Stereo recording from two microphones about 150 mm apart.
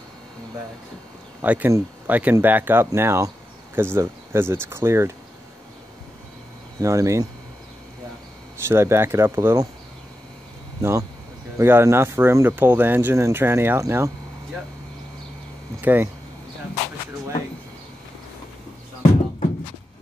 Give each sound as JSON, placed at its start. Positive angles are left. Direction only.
{"t": 1.4, "sound": "speech", "side_deg": -10}
{"t": 6.8, "sound": "speech", "side_deg": -20}
{"t": 8.6, "sound": "speech", "side_deg": -15}
{"t": 10.8, "sound": "speech", "side_deg": -20}
{"t": 15.8, "sound": "speech", "side_deg": -10}